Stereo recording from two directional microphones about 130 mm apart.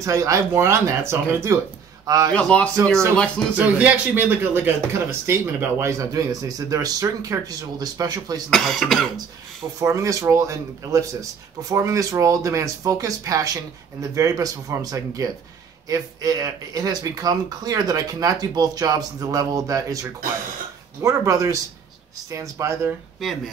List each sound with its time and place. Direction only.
0.0 s a man's voice: 25° right (ahead or behind)
2.3 s a man's voice: 10° left (ahead or behind)
3.5 s a man's voice: 10° right (ahead or behind); by 8.4 s 30° right (ahead or behind)
8.5 s speech: 5° left (ahead or behind)
9.8 s a man's voice: 25° right (ahead or behind)
23.2 s speech: centre (ahead or behind)